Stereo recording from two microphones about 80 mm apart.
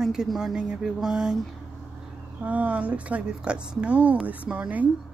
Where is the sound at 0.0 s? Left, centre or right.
Centre.